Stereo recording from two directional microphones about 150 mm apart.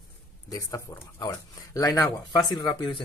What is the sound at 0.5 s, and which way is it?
Speech, 20° left (ahead or behind).